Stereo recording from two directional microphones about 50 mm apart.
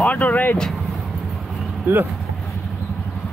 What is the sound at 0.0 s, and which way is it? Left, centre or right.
Speech, left.